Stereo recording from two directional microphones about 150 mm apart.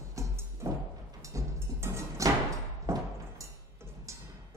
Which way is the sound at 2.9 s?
20° right (ahead or behind).